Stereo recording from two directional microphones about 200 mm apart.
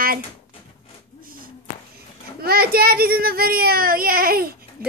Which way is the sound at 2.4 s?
50° right (ahead or behind).